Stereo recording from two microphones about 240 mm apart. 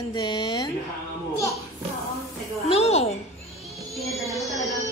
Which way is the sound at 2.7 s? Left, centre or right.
Left.